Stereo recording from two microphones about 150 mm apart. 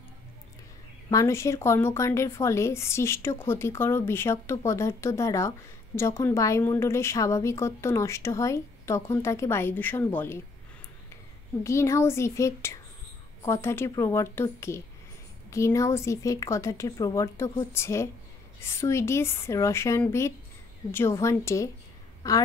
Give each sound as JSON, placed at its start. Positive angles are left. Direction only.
{"t": 1.1, "sound": "a woman's voice", "side_deg": 20}
{"t": 11.6, "sound": "a woman's voice", "side_deg": 20}